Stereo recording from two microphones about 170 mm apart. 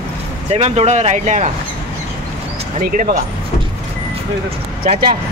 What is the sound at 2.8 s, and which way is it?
Speech, 50° right (ahead or behind).